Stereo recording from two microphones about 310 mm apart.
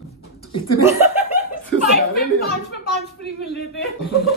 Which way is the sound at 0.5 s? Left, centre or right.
Left.